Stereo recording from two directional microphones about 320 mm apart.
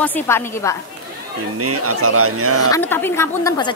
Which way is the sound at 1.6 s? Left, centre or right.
Right.